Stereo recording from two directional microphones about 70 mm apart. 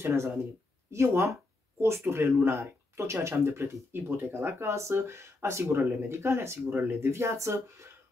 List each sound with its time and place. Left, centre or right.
0.0 s speech: right